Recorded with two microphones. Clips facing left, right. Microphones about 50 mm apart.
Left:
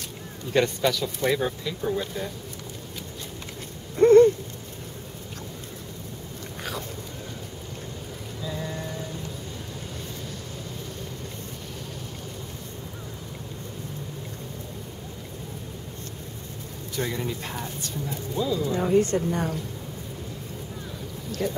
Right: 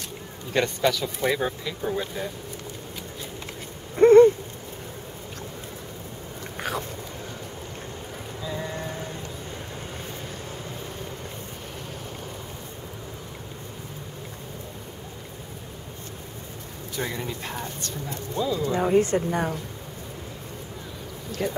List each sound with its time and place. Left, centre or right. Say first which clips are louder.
0.5 s speech: even; centre
3.9 s a sound: right 2 dB; centre
8.5 s a sound: right 1 dB; centre
16.9 s speech: left 1 dB; centre
18.7 s speech: right 1 dB; right
21.4 s speech: even; centre